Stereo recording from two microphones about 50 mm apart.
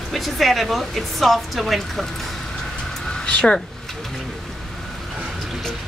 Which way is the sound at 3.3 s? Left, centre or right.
Left.